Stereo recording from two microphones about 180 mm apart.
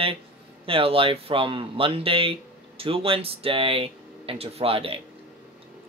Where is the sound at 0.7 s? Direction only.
30° right (ahead or behind).